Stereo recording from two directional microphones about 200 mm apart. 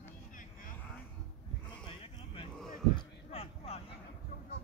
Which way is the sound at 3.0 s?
30° left (ahead or behind).